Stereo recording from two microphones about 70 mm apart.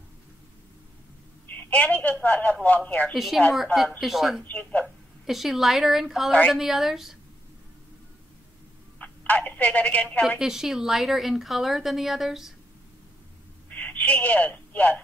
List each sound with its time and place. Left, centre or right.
1.7 s a woman's voice: centre
3.1 s speech: centre
4.5 s a woman's voice: left
4.8 s speech: centre
9.0 s speech: centre
10.4 s speech: centre
13.7 s a sound: left